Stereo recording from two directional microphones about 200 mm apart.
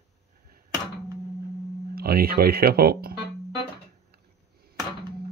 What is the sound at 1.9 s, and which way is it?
Speech, 50° right (ahead or behind).